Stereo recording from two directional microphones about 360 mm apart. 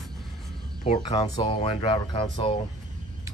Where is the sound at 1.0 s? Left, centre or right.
Centre.